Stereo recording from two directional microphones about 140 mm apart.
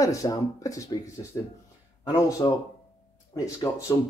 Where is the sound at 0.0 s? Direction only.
25° left (ahead or behind).